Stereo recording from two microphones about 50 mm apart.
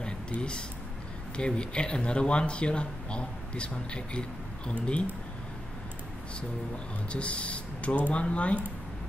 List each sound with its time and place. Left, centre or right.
0.0 s a sound: centre
1.3 s speech: centre
7.1 s speech: left